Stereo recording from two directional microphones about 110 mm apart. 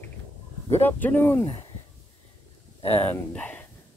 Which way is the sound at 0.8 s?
15° left (ahead or behind).